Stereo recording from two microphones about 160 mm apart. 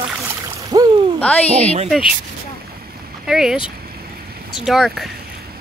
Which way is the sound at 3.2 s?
5° right (ahead or behind).